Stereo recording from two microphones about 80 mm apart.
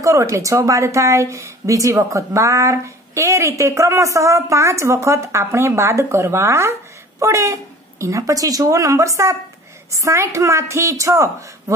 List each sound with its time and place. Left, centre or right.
0.0 s speech: right